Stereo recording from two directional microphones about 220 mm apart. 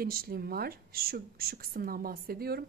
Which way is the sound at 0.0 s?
45° right (ahead or behind).